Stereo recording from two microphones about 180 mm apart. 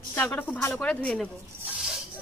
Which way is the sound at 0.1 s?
10° left (ahead or behind).